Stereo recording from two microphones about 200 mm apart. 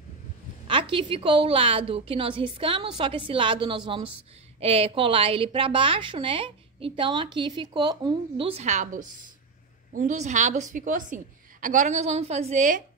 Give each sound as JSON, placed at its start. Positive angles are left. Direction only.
{"t": 0.7, "sound": "a woman's voice", "side_deg": -25}